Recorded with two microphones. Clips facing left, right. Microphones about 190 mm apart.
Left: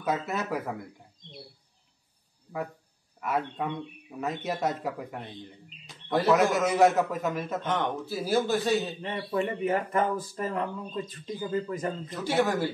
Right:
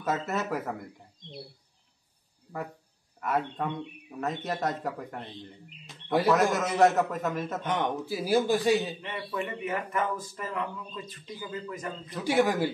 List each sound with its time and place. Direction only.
0.0 s speech: centre (ahead or behind)
3.2 s speech: centre (ahead or behind)
5.9 s speech: centre (ahead or behind)
7.6 s a man's voice: 15° right (ahead or behind)
9.0 s speech: 35° left (ahead or behind)
12.3 s a man's voice: 15° right (ahead or behind)